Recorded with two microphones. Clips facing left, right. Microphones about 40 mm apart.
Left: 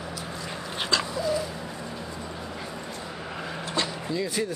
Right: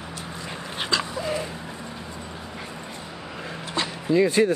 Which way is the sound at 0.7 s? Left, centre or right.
Centre.